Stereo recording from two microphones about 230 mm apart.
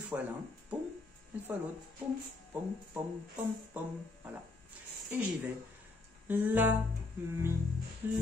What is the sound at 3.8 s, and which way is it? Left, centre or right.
Music, centre.